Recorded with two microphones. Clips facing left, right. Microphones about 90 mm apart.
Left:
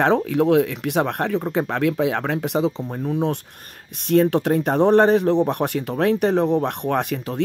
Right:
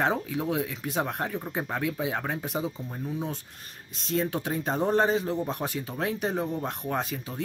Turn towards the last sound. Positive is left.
turn(degrees=65)  # may be behind; listen again after turning